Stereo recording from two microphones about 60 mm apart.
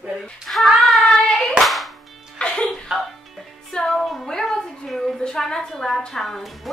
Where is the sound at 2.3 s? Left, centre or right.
Centre.